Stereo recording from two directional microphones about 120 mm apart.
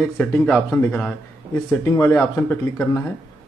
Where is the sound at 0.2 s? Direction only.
15° left (ahead or behind).